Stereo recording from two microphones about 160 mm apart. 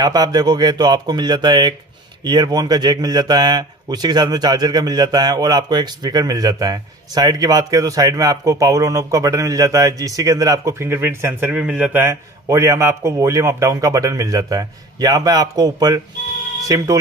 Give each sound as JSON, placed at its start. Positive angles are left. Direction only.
{"t": 0.0, "sound": "speech", "side_deg": -25}